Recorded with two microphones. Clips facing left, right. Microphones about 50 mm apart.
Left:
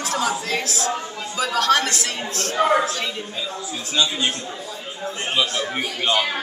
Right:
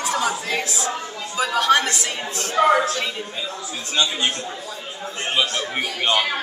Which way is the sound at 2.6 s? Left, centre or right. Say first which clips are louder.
Right 2 dB; centre.